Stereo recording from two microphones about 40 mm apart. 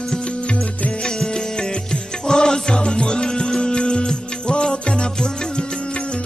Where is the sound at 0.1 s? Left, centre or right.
Centre.